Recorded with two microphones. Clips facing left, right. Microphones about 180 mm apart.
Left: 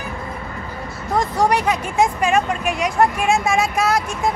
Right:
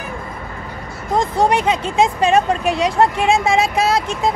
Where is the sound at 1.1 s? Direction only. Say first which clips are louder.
Right 2 dB; 25° right (ahead or behind).